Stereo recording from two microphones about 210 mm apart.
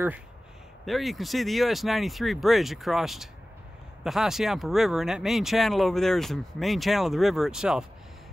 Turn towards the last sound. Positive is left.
turn(degrees=-5)  # may be behind; listen again after turning